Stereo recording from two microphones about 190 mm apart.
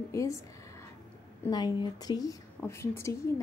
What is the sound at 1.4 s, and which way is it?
A woman's voice, 20° left (ahead or behind).